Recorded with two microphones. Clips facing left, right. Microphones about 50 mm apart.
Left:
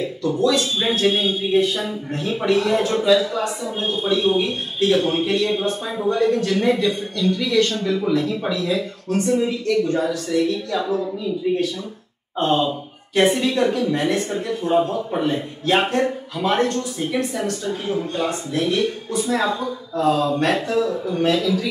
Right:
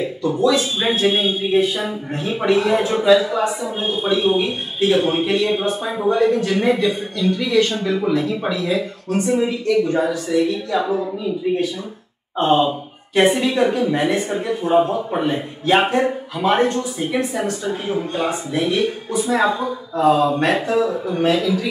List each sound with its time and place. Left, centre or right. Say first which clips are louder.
0.0 s speech: right 2 dB; centre